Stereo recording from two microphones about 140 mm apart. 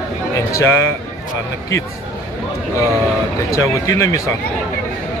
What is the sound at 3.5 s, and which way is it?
Speech, 20° left (ahead or behind).